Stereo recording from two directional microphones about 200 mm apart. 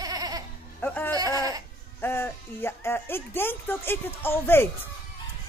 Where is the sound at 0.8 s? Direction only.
10° left (ahead or behind).